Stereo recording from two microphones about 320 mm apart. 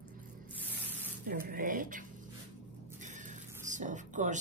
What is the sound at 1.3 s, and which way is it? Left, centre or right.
Speech, right.